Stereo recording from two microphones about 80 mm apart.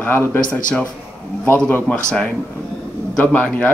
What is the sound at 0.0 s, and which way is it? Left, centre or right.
Speech, left.